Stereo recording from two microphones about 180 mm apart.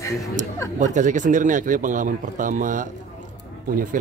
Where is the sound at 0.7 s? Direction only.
45° right (ahead or behind).